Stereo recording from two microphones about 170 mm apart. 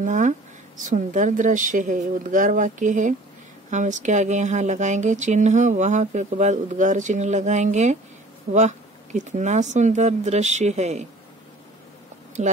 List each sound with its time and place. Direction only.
0.0 s speech: 45° right (ahead or behind)